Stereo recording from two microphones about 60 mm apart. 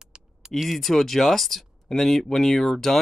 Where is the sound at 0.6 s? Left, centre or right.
Centre.